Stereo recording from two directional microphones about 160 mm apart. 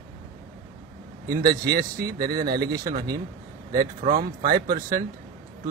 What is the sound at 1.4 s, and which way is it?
Speech, 70° right (ahead or behind).